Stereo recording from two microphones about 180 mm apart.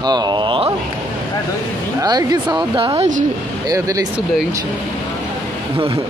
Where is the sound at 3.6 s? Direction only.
20° right (ahead or behind).